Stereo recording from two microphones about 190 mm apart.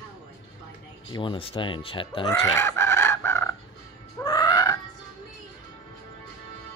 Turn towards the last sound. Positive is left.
turn(degrees=20)  # may be behind; listen again after turning